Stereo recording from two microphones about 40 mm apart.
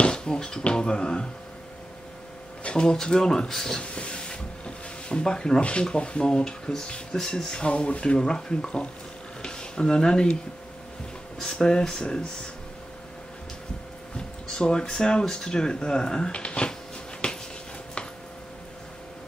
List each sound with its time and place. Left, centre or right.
0.0 s speech: left
2.7 s speech: centre
3.8 s rub: left
5.6 s speech: left
7.6 s speech: left
11.5 s speech: centre
14.1 s speech: left
16.3 s speech: left
17.2 s a sound: left